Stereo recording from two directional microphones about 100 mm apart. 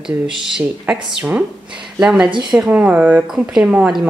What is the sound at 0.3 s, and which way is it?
A woman's voice, 10° right (ahead or behind).